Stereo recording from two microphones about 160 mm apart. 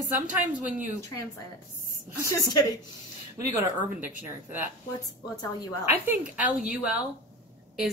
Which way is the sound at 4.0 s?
15° right (ahead or behind).